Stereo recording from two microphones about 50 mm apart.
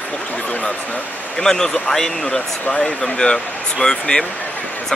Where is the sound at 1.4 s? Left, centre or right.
Centre.